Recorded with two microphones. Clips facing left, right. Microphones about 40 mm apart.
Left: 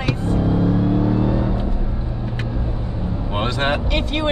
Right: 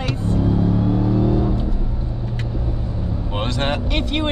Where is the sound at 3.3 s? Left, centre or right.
Centre.